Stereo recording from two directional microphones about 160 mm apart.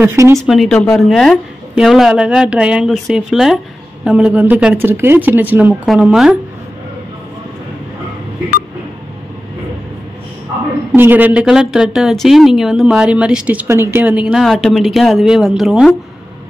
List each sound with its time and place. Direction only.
0.0 s speech: 15° right (ahead or behind)
0.4 s a woman's voice: centre (ahead or behind)
10.9 s a woman's voice: 10° right (ahead or behind)